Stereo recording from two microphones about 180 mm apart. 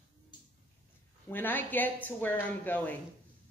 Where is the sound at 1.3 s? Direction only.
10° left (ahead or behind).